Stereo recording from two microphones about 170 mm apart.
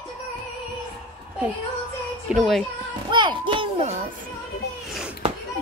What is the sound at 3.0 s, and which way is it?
Speech, 25° right (ahead or behind).